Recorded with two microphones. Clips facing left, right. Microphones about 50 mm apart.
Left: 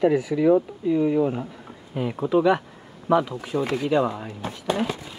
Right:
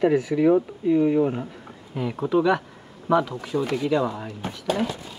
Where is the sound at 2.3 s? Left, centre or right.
Centre; by 4.9 s left.